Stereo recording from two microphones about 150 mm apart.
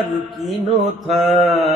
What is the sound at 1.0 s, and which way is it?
Mantra, centre (ahead or behind).